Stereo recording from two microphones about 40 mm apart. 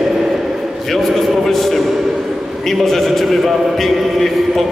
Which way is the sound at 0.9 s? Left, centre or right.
Centre.